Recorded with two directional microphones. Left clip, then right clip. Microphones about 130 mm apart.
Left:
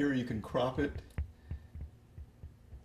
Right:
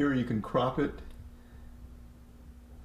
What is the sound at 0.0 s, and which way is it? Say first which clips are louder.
Speech: right 4 dB; 20° right (ahead or behind).